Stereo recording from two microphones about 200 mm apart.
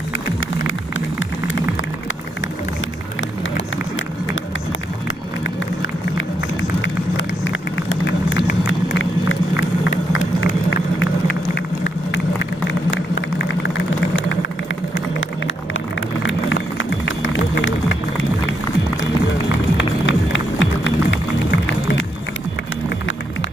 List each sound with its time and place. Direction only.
7.2 s vehicle: 70° left (ahead or behind)
9.3 s run: 75° left (ahead or behind)
11.5 s run: 60° left (ahead or behind)
12.9 s vehicle: 60° left (ahead or behind)
16.2 s a sound: 70° left (ahead or behind)
20.1 s run: 70° left (ahead or behind)